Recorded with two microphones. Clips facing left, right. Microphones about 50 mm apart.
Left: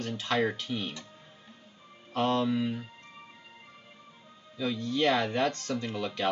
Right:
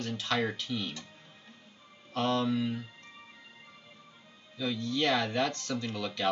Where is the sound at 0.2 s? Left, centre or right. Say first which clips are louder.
Left 4 dB; centre.